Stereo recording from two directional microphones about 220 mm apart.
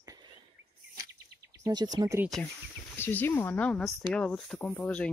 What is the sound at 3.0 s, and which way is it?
Speech, 10° left (ahead or behind).